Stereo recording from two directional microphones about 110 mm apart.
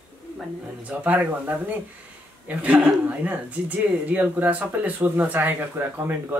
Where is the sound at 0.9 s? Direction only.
15° right (ahead or behind).